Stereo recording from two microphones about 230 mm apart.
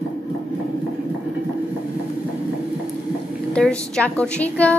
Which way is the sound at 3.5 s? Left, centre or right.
Centre.